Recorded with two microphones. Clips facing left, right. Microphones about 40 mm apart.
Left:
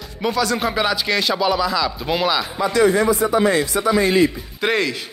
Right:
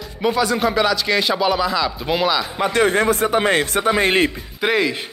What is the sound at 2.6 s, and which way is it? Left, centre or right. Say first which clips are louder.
Speech: left 1 dB; right.